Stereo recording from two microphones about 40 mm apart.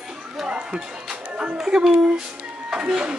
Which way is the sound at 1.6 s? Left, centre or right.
Right.